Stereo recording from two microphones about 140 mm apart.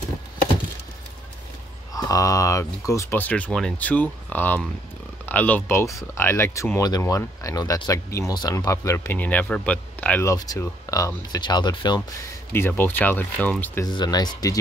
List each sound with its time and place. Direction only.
2.0 s speech: 25° left (ahead or behind)
10.3 s speech: 25° left (ahead or behind)
12.5 s speech: 15° left (ahead or behind)
13.8 s speech: 30° left (ahead or behind)